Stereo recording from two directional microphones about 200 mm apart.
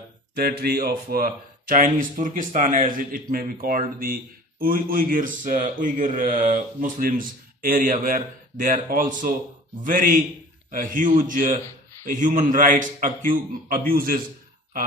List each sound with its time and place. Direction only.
0.4 s a man's voice: 50° right (ahead or behind)